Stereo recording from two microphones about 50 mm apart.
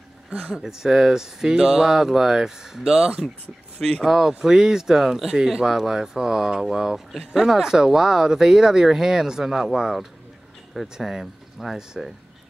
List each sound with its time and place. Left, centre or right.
0.3 s speech: centre
0.7 s speech: centre